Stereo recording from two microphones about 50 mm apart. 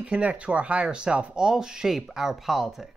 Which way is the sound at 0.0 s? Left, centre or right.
Right.